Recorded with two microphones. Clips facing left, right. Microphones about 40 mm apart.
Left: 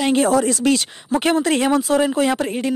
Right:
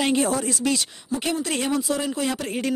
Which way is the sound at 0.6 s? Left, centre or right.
Left.